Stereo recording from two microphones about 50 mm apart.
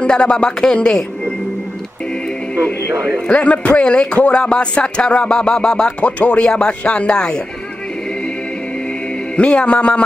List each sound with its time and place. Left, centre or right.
0.0 s a man's voice: centre
3.0 s a man's voice: left
6.4 s a man's voice: centre
9.4 s a man's voice: left